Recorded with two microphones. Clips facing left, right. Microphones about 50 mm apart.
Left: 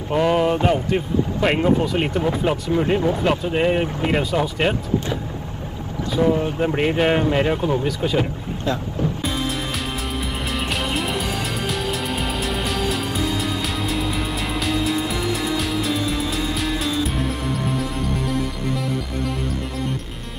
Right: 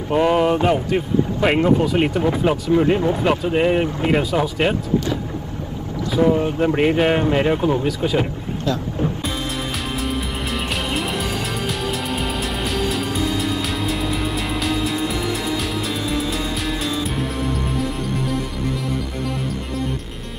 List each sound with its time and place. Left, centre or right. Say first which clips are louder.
0.1 s speech: right 2 dB; centre
6.0 s speech: right 2 dB; centre
9.0 s music: right 1 dB; right
10.5 s music: even; centre